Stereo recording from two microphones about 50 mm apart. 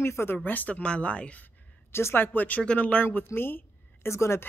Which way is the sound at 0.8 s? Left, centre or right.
Left.